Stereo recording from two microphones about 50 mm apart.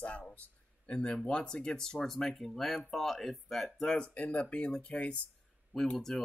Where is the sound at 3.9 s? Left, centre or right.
Left.